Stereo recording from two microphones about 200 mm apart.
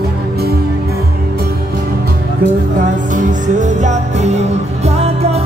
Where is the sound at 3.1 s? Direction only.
40° right (ahead or behind).